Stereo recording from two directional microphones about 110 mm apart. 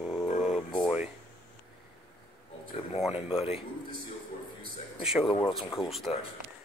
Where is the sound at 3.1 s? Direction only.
65° left (ahead or behind).